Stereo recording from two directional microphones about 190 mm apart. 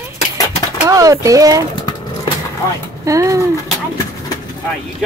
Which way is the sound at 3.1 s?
15° right (ahead or behind).